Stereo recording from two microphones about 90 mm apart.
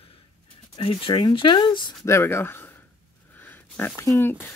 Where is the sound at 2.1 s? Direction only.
30° left (ahead or behind).